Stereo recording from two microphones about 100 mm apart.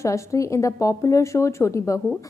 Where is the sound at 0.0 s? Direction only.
30° left (ahead or behind).